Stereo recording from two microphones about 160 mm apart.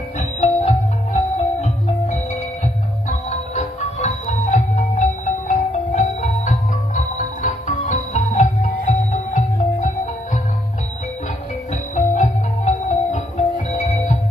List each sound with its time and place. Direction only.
0.4 s music: 45° left (ahead or behind)
11.9 s music: 50° left (ahead or behind)